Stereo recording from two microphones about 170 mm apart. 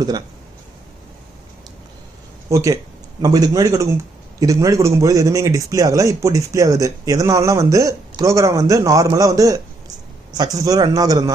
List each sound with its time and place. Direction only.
2.5 s speech: 20° right (ahead or behind)